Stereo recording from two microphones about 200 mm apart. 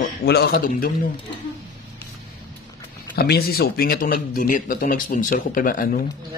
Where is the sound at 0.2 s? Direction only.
55° left (ahead or behind).